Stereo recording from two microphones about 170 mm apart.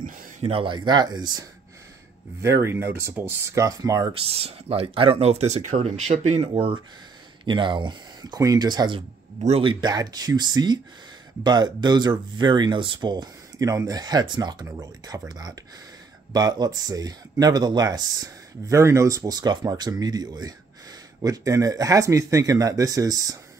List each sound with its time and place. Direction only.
0.5 s speech: 30° right (ahead or behind)
2.4 s speech: 15° right (ahead or behind)
4.1 s speech: 35° right (ahead or behind)